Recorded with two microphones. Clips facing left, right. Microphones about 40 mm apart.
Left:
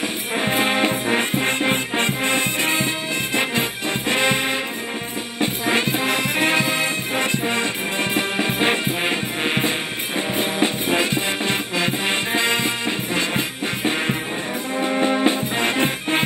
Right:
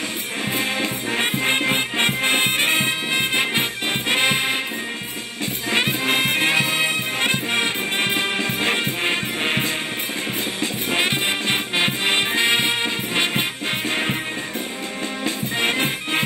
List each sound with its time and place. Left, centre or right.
0.6 s music: left
1.0 s music: left
1.7 s music: right
4.1 s music: right
5.8 s music: right
7.5 s music: right
8.4 s music: left
9.4 s music: centre
11.0 s music: right
15.0 s music: left